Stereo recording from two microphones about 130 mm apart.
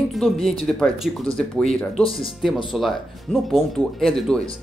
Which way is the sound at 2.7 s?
Centre (ahead or behind).